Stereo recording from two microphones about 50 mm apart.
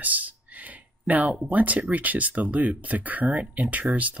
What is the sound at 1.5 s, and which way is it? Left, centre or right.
Speech, right.